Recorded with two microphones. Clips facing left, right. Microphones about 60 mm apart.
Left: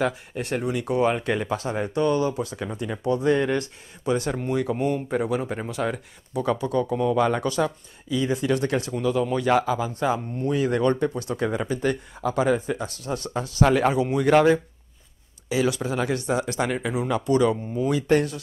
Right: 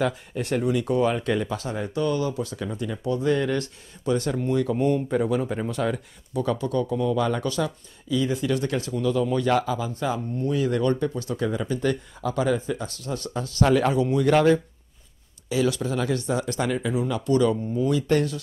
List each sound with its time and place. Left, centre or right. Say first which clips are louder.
0.4 s speech: right 3 dB; centre
1.1 s speech: even; left
11.6 s speech: even; left
12.7 s speech: left 2 dB; centre
16.7 s speech: even; left